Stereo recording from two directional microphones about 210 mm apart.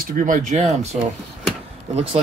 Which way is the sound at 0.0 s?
40° right (ahead or behind).